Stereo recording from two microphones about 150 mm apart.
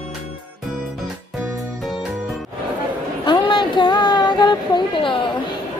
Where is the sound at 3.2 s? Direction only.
30° left (ahead or behind).